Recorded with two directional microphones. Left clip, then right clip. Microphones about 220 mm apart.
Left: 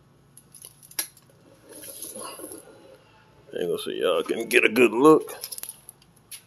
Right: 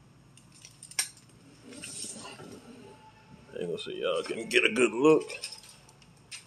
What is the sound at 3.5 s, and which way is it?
Speech, 35° left (ahead or behind).